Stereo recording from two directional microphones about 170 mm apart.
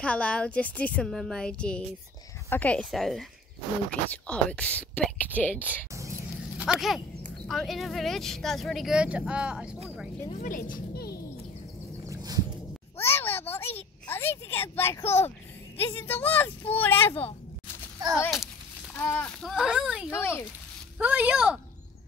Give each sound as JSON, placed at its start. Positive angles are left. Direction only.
{"t": 0.0, "sound": "a woman's voice", "side_deg": 5}
{"t": 6.6, "sound": "speech", "side_deg": -5}
{"t": 10.3, "sound": "a sound", "side_deg": 50}
{"t": 12.1, "sound": "a sound", "side_deg": -20}
{"t": 13.0, "sound": "a child's voice", "side_deg": 15}
{"t": 18.9, "sound": "speech", "side_deg": 10}
{"t": 20.1, "sound": "a woman's voice", "side_deg": 15}
{"t": 21.0, "sound": "speech", "side_deg": -10}